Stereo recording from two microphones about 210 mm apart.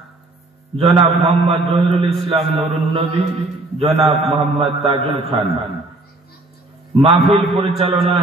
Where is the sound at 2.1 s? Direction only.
Centre (ahead or behind).